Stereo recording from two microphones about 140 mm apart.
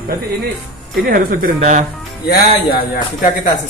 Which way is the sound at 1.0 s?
85° right.